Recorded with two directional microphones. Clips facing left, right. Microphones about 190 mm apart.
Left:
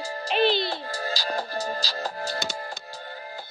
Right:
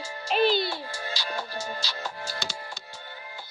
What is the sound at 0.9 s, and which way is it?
Music, 40° left (ahead or behind).